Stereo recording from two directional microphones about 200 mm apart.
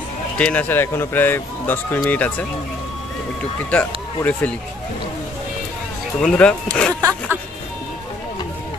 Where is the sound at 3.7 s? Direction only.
5° left (ahead or behind).